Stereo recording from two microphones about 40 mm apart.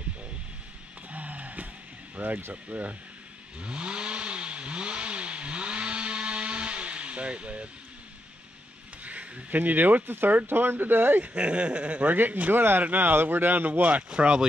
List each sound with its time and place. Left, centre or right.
1.1 s a sound: right
2.5 s speech: right
3.5 s vehicle: right
9.0 s speech: right
10.4 s speech: right
11.3 s speech: right
12.0 s speech: right
14.1 s speech: right